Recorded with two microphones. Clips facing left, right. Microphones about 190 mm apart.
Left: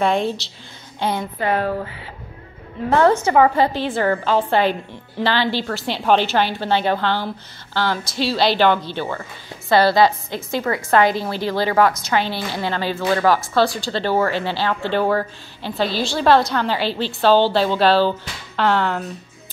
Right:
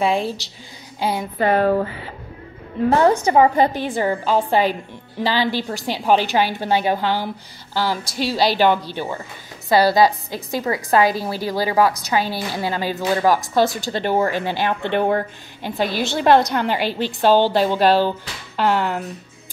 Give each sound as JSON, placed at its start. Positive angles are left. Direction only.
{"t": 0.0, "sound": "a woman's voice", "side_deg": -5}
{"t": 1.4, "sound": "speech", "side_deg": -45}
{"t": 2.9, "sound": "a woman's voice", "side_deg": -15}